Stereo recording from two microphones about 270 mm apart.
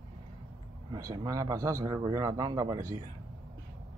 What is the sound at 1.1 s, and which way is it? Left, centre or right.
A man's voice, centre.